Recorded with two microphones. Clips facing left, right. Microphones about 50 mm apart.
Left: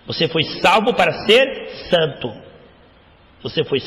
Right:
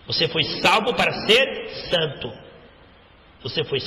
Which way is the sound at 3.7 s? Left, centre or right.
Centre.